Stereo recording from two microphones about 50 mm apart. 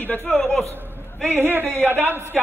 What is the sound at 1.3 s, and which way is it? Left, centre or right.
A man's voice, right.